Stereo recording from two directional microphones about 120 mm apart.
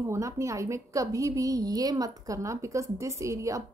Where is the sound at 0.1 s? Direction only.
25° right (ahead or behind).